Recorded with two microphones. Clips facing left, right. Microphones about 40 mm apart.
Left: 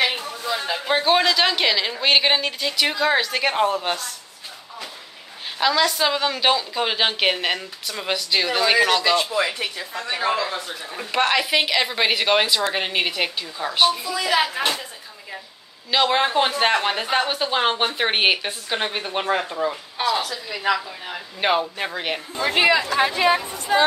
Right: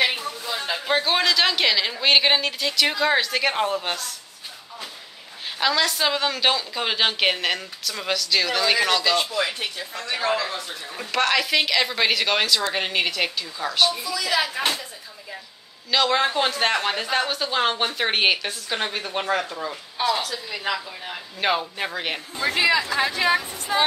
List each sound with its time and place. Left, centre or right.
0.0 s a sound: centre
0.7 s speech: centre
5.6 s speech: centre
8.1 s speech: centre
14.1 s speech: left
15.9 s speech: centre
22.5 s speech: left
22.9 s speech: centre